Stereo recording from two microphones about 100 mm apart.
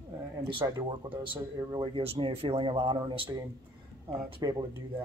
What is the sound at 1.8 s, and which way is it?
Speech, 70° right (ahead or behind).